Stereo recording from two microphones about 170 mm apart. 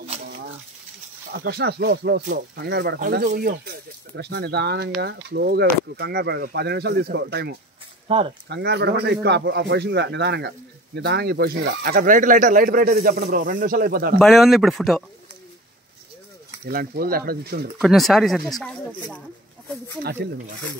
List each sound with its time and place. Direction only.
0.0 s a sound: 35° right (ahead or behind)
1.3 s speech: 65° right (ahead or behind)
3.0 s speech: 55° right (ahead or behind); by 7.5 s 80° right
8.1 s speech: 35° right (ahead or behind)
8.5 s speech: 80° right
11.0 s speech: 75° right (ahead or behind)
14.1 s speech: centre (ahead or behind)
16.6 s speech: 60° right (ahead or behind)
17.8 s speech: centre (ahead or behind)
20.0 s speech: 65° right (ahead or behind)